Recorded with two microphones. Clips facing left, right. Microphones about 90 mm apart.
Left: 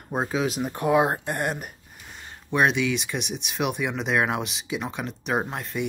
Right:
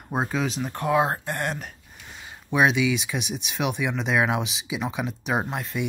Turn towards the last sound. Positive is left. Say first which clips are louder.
# even
turn(degrees=0)  # may be behind; listen again after turning